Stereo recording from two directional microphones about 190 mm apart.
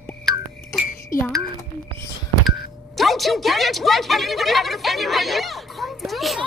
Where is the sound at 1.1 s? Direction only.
45° left (ahead or behind).